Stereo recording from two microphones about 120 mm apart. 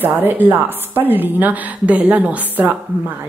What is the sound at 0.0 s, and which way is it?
A woman's voice, 15° right (ahead or behind).